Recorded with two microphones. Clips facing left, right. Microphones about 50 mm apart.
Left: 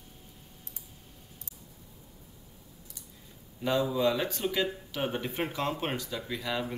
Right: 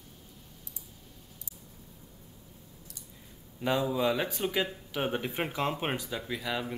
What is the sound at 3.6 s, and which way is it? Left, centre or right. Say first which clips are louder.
Speech: left 1 dB; centre.